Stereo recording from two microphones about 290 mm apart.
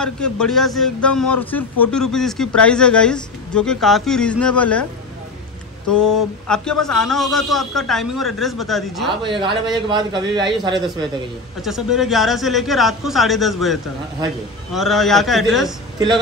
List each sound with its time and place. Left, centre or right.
0.0 s a man's voice: centre
5.9 s a man's voice: centre
9.2 s a man's voice: centre
11.6 s a man's voice: centre